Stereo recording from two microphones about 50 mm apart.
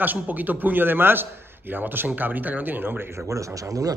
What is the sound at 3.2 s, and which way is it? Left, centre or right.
Speech, right.